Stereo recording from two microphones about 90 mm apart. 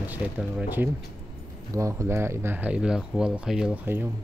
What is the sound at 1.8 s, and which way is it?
Speech, 35° right (ahead or behind).